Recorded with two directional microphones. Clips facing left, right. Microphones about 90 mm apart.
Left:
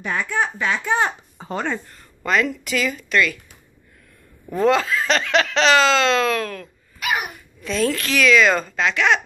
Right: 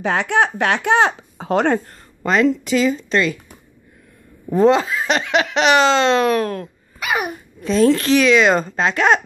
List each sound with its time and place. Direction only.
0.0 s speech: 90° right
2.2 s speech: 25° right (ahead or behind)
4.5 s speech: 20° right (ahead or behind); by 9.2 s 35° right (ahead or behind)